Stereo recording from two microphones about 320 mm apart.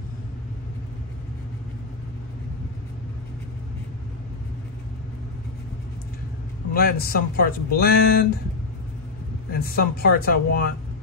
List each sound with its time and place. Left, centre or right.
6.7 s speech: left
9.5 s speech: left